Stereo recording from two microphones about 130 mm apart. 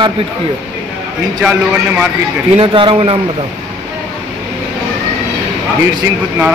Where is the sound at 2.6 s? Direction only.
40° right (ahead or behind).